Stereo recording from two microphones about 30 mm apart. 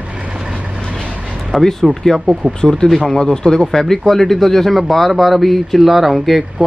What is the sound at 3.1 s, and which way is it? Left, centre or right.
Speech, centre.